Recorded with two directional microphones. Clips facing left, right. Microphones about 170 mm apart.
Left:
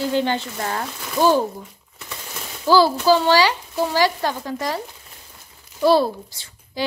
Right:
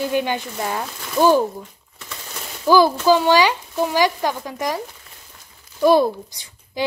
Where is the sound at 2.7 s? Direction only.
15° right (ahead or behind).